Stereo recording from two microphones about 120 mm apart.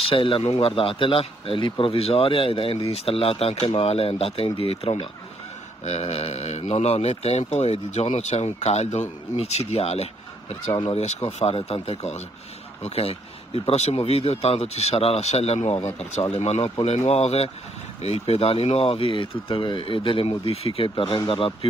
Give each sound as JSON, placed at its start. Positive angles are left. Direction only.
{"t": 0.0, "sound": "speech", "side_deg": 50}